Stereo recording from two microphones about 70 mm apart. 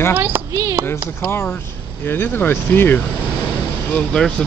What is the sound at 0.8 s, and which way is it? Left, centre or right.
Speech, left.